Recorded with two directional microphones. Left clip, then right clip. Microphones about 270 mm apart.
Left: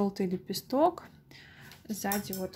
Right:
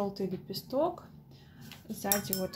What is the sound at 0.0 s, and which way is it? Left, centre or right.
Speech, left.